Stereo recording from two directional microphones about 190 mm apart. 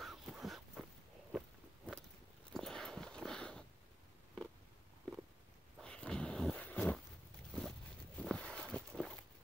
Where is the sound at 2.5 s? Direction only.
5° left (ahead or behind).